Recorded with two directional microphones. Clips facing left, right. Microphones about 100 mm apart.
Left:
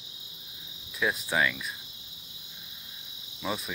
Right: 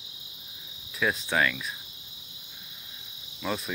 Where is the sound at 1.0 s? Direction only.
10° left (ahead or behind).